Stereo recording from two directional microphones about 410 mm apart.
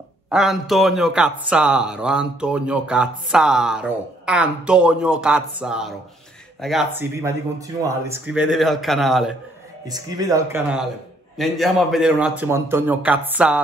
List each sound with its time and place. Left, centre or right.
0.3 s a man's voice: centre